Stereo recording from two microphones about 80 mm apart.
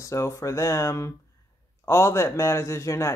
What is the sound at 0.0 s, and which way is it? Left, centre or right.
Speech, left.